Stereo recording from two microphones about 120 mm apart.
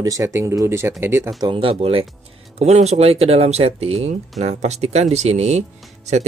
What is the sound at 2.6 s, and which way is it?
Speech, 65° right (ahead or behind).